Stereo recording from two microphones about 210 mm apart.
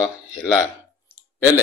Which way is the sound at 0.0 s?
15° left (ahead or behind).